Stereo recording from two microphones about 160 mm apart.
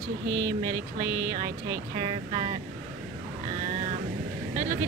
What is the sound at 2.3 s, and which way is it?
Speech, 55° right (ahead or behind).